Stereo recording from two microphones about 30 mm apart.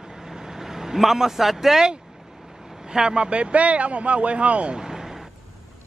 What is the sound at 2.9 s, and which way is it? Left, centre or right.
Speech, right.